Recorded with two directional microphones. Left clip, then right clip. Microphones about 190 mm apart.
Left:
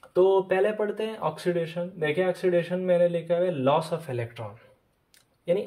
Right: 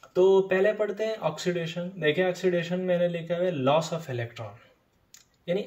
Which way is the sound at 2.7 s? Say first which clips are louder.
Left 3 dB; 35° left (ahead or behind).